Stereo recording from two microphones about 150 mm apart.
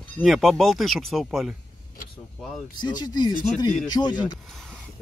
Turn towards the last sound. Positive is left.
turn(degrees=30)  # may be behind; listen again after turning